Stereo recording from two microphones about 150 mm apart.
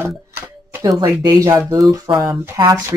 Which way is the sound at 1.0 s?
25° right (ahead or behind).